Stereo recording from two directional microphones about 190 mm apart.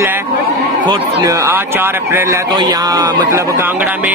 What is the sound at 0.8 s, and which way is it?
Speech, 15° right (ahead or behind).